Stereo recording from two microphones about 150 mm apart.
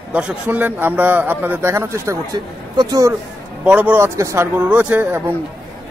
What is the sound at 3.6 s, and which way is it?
A man's voice, 10° right (ahead or behind).